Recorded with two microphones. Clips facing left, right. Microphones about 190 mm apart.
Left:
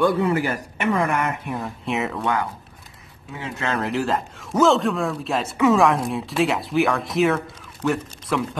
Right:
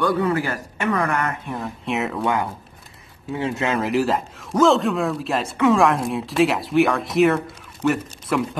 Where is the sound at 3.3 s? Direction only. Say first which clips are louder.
Right 8 dB; 30° right (ahead or behind).